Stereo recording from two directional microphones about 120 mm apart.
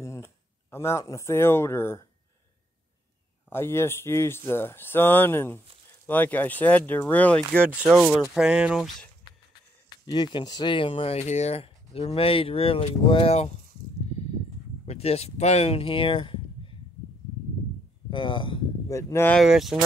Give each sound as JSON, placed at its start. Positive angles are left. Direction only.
{"t": 0.0, "sound": "speech", "side_deg": 25}
{"t": 3.4, "sound": "speech", "side_deg": 20}
{"t": 7.6, "sound": "speech", "side_deg": -10}
{"t": 9.8, "sound": "speech", "side_deg": 35}
{"t": 14.9, "sound": "speech", "side_deg": 60}
{"t": 18.1, "sound": "speech", "side_deg": 45}
{"t": 18.9, "sound": "speech", "side_deg": 25}
{"t": 19.4, "sound": "speech", "side_deg": -5}